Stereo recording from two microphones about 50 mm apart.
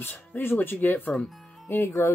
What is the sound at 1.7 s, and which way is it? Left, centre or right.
Speech, left.